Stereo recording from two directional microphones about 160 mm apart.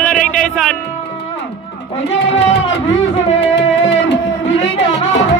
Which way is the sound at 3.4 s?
90° left.